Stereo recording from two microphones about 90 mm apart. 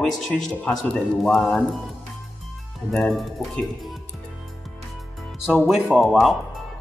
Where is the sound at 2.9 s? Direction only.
5° left (ahead or behind).